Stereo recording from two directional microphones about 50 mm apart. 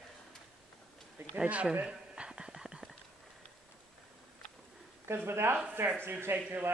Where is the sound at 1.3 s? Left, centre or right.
Right.